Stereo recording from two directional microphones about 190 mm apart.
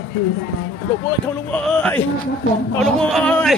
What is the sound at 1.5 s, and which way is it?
A man's voice, 5° left (ahead or behind).